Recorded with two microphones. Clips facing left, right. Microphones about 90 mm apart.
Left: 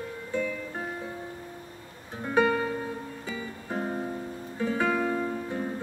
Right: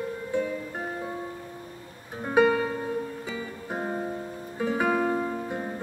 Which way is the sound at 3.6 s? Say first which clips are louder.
Even; 20° right (ahead or behind).